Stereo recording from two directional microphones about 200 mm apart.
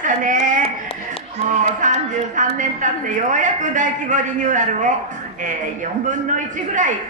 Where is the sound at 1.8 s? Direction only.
40° right (ahead or behind).